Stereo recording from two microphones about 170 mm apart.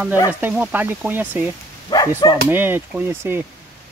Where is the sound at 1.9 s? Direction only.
25° left (ahead or behind).